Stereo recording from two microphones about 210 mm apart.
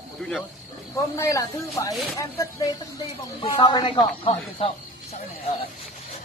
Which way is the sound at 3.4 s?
25° left (ahead or behind).